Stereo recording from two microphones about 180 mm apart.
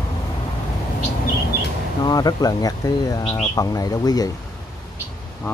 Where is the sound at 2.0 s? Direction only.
20° left (ahead or behind).